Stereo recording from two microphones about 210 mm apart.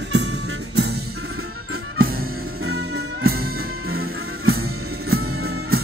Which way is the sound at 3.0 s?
45° right (ahead or behind).